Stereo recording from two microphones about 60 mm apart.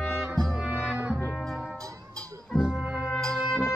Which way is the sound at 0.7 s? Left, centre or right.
Right.